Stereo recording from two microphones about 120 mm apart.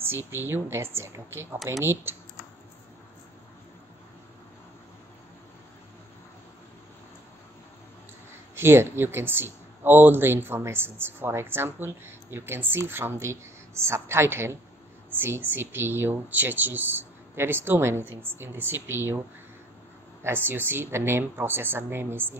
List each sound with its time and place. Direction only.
0.0 s speech: 20° right (ahead or behind)
8.5 s speech: 20° right (ahead or behind)
20.2 s speech: 15° right (ahead or behind)